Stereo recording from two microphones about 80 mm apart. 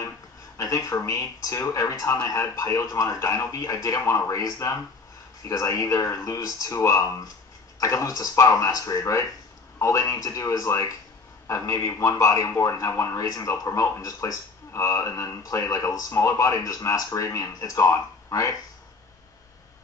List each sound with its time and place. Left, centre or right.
0.6 s speech: left